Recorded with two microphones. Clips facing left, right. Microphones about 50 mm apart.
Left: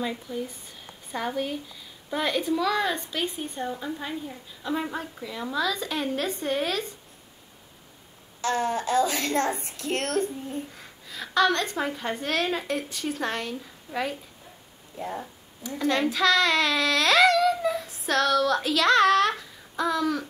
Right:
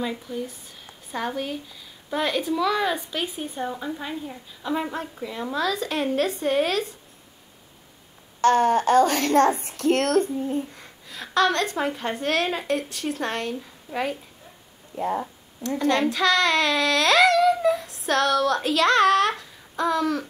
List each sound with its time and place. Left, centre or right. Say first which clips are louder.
0.0 s a woman's voice: right 2 dB; centre
8.4 s a child's voice: right 8 dB; right
10.8 s speech: even; centre
15.6 s speech: right 3 dB; centre